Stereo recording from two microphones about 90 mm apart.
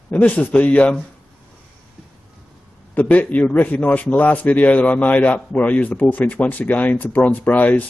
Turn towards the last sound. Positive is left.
turn(degrees=20)  # may be behind; listen again after turning